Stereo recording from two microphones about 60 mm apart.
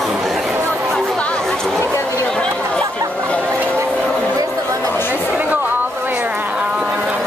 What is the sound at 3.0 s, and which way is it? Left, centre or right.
Chatter, right.